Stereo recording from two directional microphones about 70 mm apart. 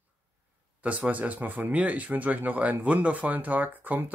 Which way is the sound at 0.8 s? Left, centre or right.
Right.